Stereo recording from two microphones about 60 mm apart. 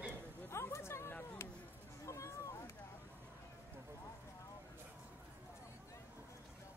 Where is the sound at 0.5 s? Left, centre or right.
Left.